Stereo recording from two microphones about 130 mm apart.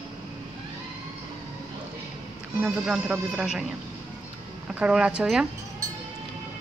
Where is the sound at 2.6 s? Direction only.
10° right (ahead or behind).